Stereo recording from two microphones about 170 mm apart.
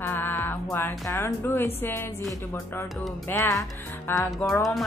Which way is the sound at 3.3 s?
15° left (ahead or behind).